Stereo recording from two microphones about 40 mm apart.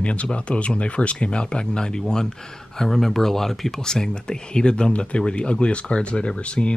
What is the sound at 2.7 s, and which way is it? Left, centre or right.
Speech, centre.